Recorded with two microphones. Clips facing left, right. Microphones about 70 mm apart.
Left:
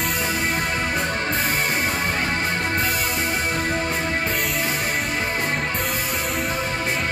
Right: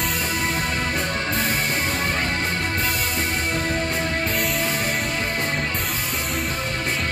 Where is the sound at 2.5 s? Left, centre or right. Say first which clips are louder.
Left 2 dB; left.